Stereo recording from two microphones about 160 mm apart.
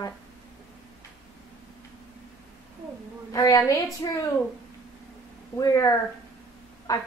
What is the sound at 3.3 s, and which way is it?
Speech, 20° left (ahead or behind).